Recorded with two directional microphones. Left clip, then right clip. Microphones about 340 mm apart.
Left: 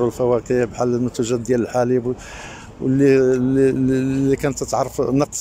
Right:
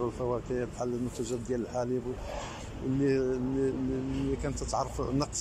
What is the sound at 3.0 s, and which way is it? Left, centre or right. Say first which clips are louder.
Speech: left 14 dB; left.